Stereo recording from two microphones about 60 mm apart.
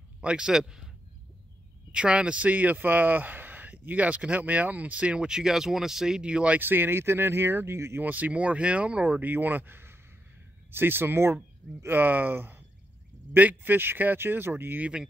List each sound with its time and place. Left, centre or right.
0.2 s speech: centre
1.9 s speech: centre
6.6 s speech: right
8.0 s speech: right